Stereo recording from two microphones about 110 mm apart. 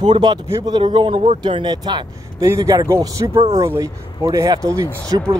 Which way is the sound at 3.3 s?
70° right (ahead or behind).